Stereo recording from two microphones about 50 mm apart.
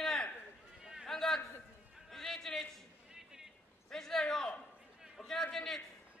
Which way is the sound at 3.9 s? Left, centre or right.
Centre.